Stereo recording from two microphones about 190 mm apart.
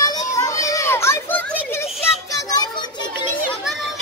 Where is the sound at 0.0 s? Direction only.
20° left (ahead or behind).